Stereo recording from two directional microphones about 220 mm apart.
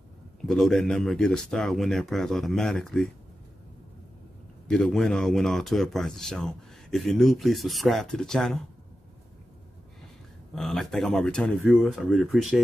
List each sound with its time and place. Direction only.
0.5 s speech: 5° left (ahead or behind)
4.6 s speech: 5° left (ahead or behind)
10.5 s speech: centre (ahead or behind)